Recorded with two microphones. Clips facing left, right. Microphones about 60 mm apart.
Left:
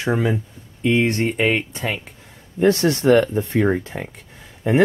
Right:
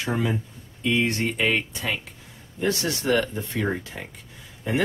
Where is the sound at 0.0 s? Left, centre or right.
Left.